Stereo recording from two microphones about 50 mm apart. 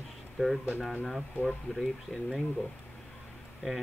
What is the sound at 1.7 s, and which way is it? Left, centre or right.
Speech, centre.